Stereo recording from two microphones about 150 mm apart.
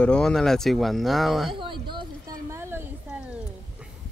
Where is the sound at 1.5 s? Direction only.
35° right (ahead or behind).